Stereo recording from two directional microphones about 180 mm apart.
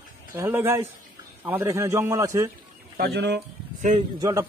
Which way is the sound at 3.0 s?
70° right (ahead or behind).